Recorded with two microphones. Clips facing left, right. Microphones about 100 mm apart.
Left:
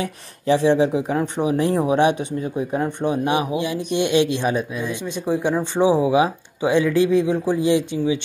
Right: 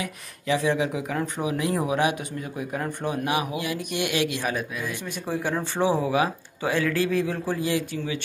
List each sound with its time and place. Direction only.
0.0 s speech: 30° left (ahead or behind)